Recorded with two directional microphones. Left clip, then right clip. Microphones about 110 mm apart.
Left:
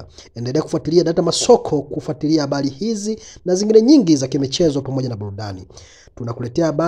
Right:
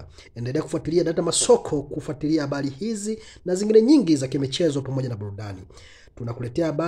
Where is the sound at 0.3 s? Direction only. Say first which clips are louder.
Left 6 dB; 35° left (ahead or behind).